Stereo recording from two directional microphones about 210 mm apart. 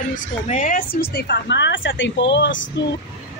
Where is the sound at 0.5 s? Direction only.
35° left (ahead or behind); by 2.9 s 60° left (ahead or behind).